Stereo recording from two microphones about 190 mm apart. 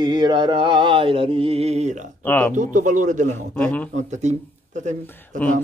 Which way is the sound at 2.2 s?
10° left (ahead or behind).